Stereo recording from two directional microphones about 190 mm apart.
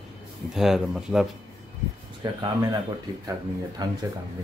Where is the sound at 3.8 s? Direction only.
20° right (ahead or behind).